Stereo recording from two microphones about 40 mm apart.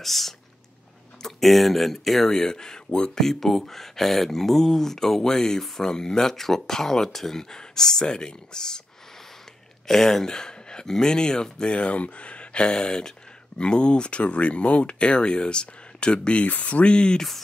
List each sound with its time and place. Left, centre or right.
0.0 s speech: centre
3.3 s speech: centre
9.8 s speech: centre
10.2 s speech: centre
11.6 s speech: left
12.6 s speech: centre
16.4 s speech: left